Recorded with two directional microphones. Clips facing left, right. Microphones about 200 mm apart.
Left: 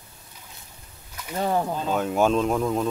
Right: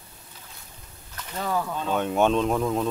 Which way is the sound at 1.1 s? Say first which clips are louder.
Left 4 dB; 10° left (ahead or behind).